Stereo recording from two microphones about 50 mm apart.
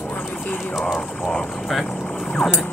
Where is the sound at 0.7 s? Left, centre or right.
Centre.